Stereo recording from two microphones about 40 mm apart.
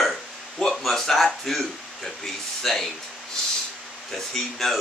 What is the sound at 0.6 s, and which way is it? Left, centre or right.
Speech, centre.